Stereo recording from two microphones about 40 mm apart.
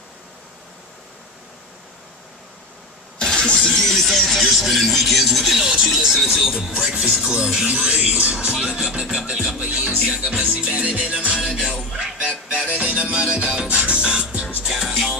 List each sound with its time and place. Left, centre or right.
3.2 s vehicle: centre
3.7 s music: centre
5.6 s speech: centre
7.2 s speech: centre
9.6 s music: right
11.3 s speech: centre
11.6 s music: right
14.6 s music: centre